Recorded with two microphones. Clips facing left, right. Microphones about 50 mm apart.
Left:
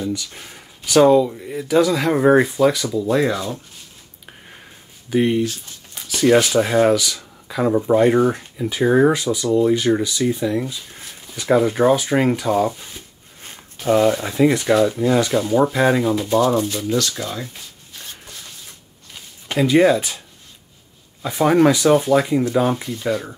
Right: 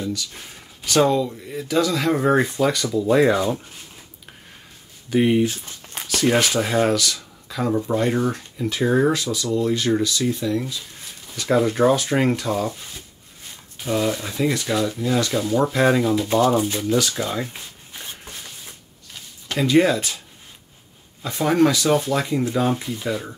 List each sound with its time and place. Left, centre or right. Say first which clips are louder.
0.0 s speech: left 3 dB; centre
3.3 s speech: right 4 dB; right
5.3 s speech: right 1 dB; right
6.0 s speech: left 4 dB; centre
7.4 s speech: left 5 dB; centre
14.7 s speech: left 6 dB; centre
17.0 s speech: right 1 dB; centre
17.9 s rub: right 1 dB; right
19.4 s speech: left 3 dB; centre
21.2 s speech: left 3 dB; centre
23.0 s speech: left 5 dB; centre